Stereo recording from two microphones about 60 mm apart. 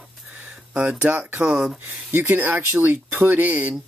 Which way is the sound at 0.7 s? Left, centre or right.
Right.